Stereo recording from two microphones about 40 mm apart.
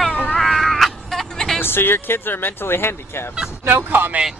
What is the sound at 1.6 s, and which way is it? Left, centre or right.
Speech, left.